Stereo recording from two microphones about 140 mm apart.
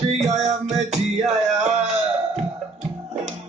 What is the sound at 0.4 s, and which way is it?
Music, 55° right (ahead or behind).